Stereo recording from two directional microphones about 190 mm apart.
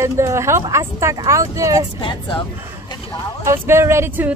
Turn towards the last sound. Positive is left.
turn(degrees=-10)  # may be behind; listen again after turning